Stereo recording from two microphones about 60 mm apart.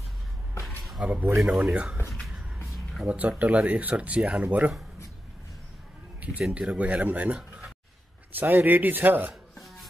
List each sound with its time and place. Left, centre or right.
1.0 s speech: centre
1.4 s speech: centre
1.7 s speech: centre
2.2 s a sound: centre
3.1 s speech: right
6.7 s speech: right